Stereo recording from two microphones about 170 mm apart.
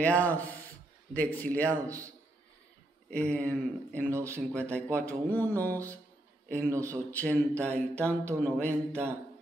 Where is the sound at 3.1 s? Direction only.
5° left (ahead or behind).